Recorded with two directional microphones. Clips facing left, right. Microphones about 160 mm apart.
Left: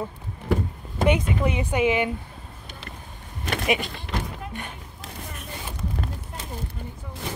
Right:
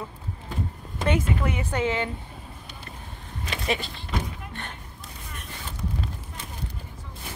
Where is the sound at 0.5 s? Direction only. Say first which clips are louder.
Left 9 dB; 75° left (ahead or behind).